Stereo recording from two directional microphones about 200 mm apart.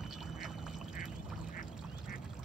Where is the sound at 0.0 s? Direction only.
Centre (ahead or behind).